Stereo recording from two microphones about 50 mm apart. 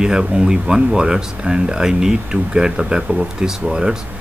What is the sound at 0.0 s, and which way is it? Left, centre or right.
Speech, centre.